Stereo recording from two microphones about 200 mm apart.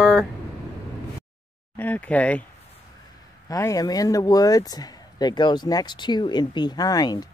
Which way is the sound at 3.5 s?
15° left (ahead or behind).